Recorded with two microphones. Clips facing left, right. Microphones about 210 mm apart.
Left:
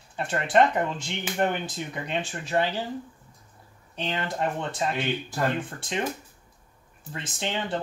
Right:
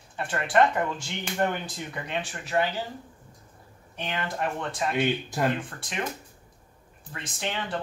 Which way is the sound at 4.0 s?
25° left (ahead or behind).